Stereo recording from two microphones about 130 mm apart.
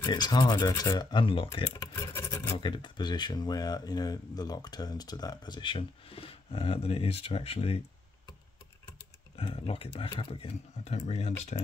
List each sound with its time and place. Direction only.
0.0 s speech: 35° left (ahead or behind)
1.2 s speech: 45° left (ahead or behind)
2.0 s patter: 20° left (ahead or behind)
2.6 s speech: 35° left (ahead or behind)
9.4 s speech: 45° left (ahead or behind); by 11.4 s 60° left (ahead or behind)